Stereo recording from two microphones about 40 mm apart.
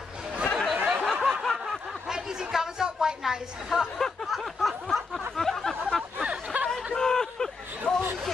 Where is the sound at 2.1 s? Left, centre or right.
Centre.